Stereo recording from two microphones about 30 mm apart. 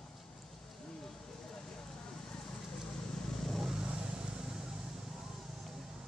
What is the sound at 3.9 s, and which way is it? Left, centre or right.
Vehicle, right.